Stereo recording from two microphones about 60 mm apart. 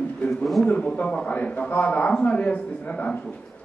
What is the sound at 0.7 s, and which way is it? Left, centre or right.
A man's voice, left.